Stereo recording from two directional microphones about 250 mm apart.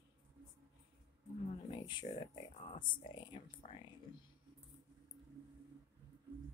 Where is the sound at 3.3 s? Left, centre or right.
Left.